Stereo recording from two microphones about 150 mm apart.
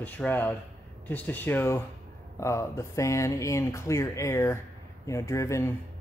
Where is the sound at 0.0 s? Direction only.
10° left (ahead or behind).